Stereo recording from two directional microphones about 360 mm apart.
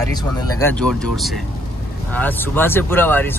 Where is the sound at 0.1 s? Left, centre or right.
Centre.